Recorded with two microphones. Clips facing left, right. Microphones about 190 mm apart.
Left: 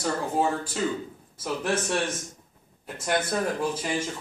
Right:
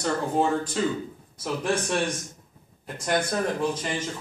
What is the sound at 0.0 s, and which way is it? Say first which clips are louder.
A man's voice: right 1 dB; 5° left (ahead or behind).